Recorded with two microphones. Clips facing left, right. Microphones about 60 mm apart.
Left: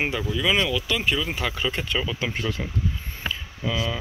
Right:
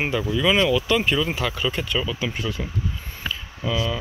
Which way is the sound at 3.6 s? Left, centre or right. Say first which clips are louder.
Right 2 dB; centre.